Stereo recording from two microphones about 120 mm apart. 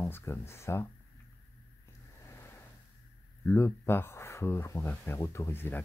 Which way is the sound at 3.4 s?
20° left (ahead or behind).